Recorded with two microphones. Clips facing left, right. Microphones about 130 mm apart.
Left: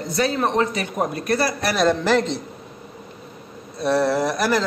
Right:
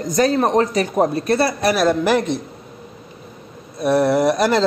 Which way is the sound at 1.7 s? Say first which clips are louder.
Left 1 dB; 10° right (ahead or behind).